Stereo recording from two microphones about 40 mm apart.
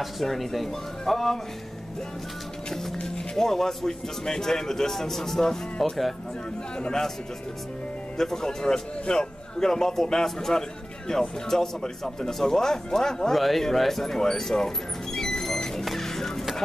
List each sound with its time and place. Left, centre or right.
0.0 s speech: centre
3.3 s a man's voice: centre
6.8 s a man's voice: centre
8.2 s a man's voice: centre
15.1 s music: centre